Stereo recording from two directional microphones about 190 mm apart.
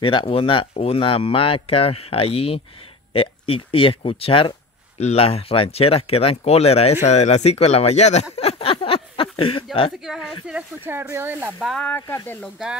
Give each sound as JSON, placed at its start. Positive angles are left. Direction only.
{"t": 0.0, "sound": "speech", "side_deg": 30}
{"t": 10.0, "sound": "speech", "side_deg": -5}